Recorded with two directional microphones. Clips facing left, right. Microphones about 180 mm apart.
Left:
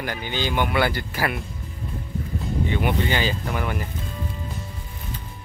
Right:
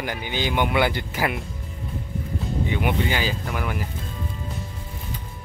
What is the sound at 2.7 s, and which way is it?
A man's voice, 10° right (ahead or behind).